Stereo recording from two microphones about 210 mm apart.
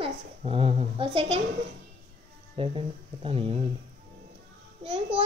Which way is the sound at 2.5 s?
25° right (ahead or behind).